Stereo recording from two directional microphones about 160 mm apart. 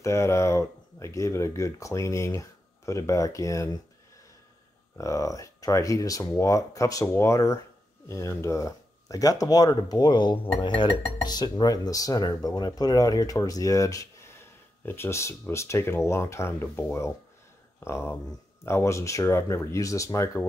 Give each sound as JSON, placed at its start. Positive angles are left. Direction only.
{"t": 0.0, "sound": "speech", "side_deg": 20}
{"t": 4.9, "sound": "speech", "side_deg": 20}